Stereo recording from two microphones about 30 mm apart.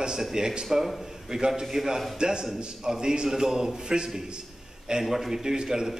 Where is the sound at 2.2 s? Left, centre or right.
Right.